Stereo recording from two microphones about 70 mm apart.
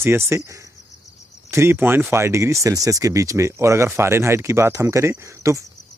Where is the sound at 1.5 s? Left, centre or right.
Right.